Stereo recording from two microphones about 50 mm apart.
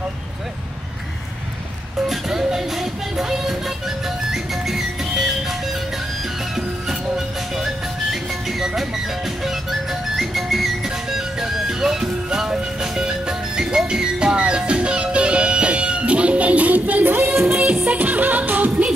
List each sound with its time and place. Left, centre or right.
2.0 s music: centre; by 17.5 s right
17.5 s music: right